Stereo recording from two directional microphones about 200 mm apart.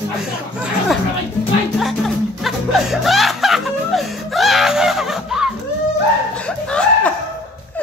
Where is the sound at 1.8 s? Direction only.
Centre (ahead or behind).